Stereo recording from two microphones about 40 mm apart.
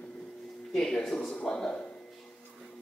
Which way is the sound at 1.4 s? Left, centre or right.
Left.